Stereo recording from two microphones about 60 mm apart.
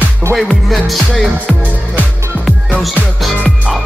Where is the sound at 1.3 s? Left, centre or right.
Right.